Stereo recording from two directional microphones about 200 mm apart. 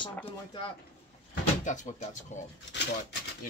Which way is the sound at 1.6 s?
40° left (ahead or behind).